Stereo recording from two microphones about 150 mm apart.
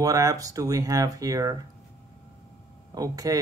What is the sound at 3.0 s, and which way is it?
Speech, 25° right (ahead or behind).